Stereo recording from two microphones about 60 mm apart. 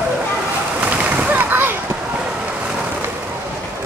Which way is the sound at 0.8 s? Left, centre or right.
Right.